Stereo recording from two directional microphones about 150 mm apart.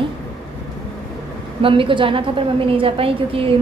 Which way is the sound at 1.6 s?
35° right (ahead or behind).